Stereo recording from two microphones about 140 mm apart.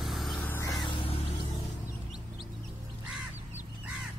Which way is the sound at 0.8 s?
40° left (ahead or behind).